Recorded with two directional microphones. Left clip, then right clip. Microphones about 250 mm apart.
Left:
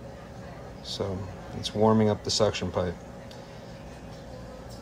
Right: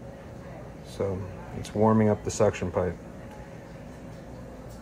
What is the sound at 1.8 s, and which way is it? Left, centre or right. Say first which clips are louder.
Speech: even; centre.